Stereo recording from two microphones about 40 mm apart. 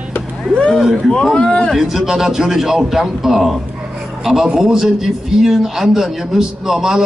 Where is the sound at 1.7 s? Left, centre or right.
Centre.